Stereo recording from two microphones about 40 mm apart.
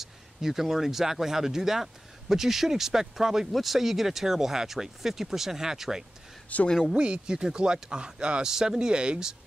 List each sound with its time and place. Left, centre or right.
0.0 s speech: centre